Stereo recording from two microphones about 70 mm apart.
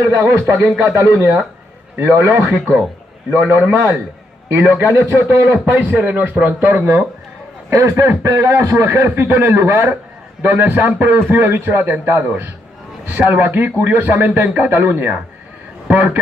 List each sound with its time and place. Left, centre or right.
0.0 s a man's voice: right
2.5 s a man's voice: right
5.7 s speech: right
7.9 s a man's voice: right